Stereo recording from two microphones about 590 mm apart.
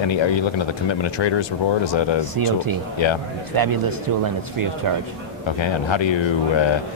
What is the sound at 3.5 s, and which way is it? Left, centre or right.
Speech, right.